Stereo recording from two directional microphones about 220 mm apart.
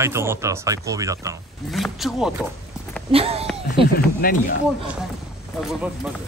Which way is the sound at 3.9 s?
40° left (ahead or behind).